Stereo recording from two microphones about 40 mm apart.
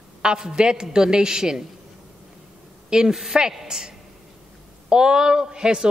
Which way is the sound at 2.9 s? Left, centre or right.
Centre.